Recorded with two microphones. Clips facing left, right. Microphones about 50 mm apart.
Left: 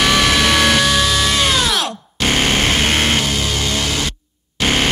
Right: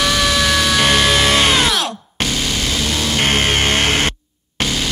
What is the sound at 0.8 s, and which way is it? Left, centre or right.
Music, right.